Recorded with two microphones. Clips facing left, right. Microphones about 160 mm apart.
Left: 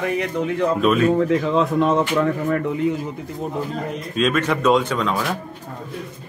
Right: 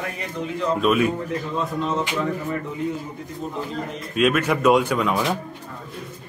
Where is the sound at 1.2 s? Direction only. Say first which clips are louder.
Left 8 dB; 90° left; by 2.9 s 65° left (ahead or behind).